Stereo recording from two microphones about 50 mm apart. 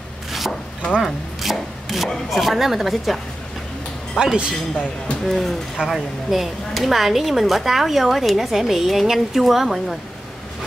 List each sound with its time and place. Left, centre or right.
0.3 s a sound: centre
1.4 s wood: centre
2.0 s speech: centre
4.2 s speech: centre
5.2 s speech: centre